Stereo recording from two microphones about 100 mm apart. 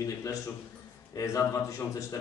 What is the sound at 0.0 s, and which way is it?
A man's voice, 35° left (ahead or behind).